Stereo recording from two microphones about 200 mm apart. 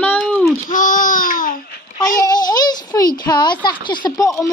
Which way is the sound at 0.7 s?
40° left (ahead or behind).